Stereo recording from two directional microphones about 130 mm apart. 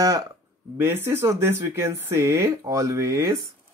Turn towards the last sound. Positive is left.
turn(degrees=-25)  # may be behind; listen again after turning